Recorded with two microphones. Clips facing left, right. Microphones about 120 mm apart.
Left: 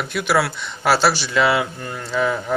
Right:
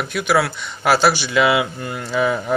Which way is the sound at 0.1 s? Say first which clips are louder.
Right 1 dB; centre (ahead or behind).